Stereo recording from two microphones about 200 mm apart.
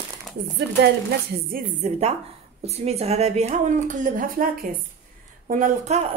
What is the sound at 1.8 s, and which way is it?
A woman's voice, 35° right (ahead or behind).